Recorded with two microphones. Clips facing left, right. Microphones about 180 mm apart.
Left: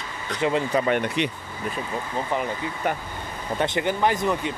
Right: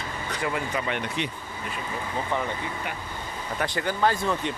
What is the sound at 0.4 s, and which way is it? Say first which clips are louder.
Speech: left 7 dB; 25° left (ahead or behind).